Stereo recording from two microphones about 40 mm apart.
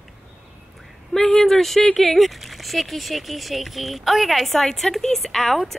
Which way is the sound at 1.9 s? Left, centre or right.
Centre.